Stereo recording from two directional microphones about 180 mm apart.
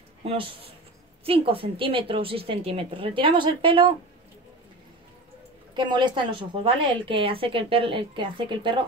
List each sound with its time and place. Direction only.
0.2 s speech: 30° right (ahead or behind)
5.8 s speech: 25° right (ahead or behind)